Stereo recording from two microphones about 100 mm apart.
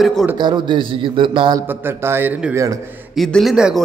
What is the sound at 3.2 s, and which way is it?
Speech, centre (ahead or behind).